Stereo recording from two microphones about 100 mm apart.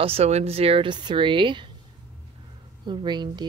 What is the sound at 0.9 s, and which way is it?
Speech, 50° right (ahead or behind).